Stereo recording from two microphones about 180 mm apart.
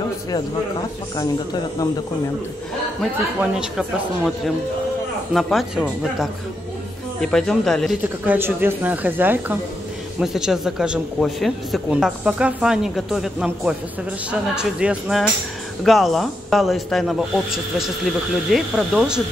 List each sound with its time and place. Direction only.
1.1 s a man's voice: 25° left (ahead or behind)
3.3 s speech: 5° right (ahead or behind)
5.3 s speech: centre (ahead or behind)